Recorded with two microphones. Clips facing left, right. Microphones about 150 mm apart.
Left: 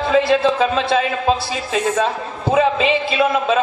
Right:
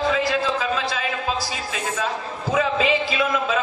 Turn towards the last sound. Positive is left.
turn(degrees=25)  # may be behind; listen again after turning